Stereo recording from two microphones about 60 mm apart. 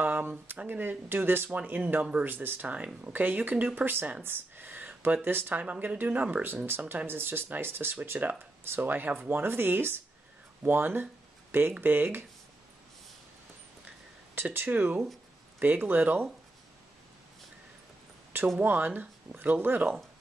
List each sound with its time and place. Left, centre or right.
0.0 s speech: right
1.6 s speech: centre
2.2 s speech: right
2.7 s speech: right
4.2 s speech: right
5.6 s speech: right
13.8 s a sound: right
15.6 s speech: right
18.6 s speech: right